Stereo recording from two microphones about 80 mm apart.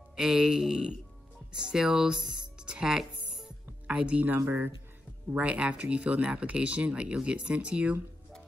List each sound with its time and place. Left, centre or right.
0.1 s speech: centre
2.6 s music: centre
4.4 s speech: right
5.3 s speech: centre